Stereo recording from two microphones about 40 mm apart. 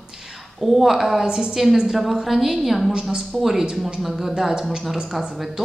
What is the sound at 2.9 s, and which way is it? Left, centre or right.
Speech, centre.